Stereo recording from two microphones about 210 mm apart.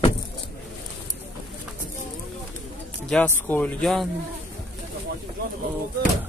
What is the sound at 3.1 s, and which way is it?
Speech, 10° left (ahead or behind).